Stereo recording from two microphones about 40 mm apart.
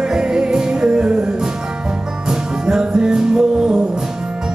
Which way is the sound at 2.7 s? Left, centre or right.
Centre.